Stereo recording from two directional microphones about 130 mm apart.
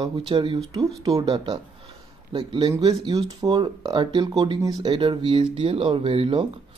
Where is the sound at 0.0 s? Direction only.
40° right (ahead or behind).